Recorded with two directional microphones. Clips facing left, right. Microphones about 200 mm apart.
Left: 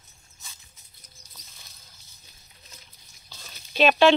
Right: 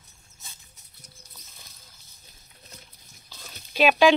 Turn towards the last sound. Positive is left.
turn(degrees=-10)  # may be behind; listen again after turning